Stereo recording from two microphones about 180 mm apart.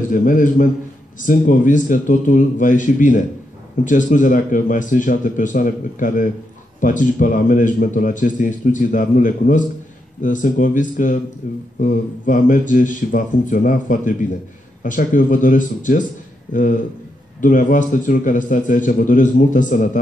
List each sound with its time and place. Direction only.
0.1 s a man's voice: 45° left (ahead or behind)